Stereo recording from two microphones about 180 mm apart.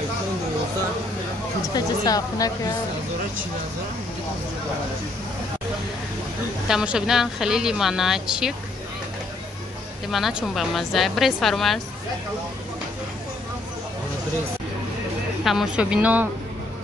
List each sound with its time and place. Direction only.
1.7 s speech: 20° left (ahead or behind)
6.7 s speech: 5° right (ahead or behind)
10.1 s speech: centre (ahead or behind)
15.4 s speech: 5° right (ahead or behind)